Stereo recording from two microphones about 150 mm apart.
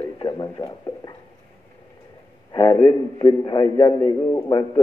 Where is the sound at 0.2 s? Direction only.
25° left (ahead or behind).